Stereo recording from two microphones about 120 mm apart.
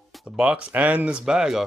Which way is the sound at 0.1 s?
5° right (ahead or behind).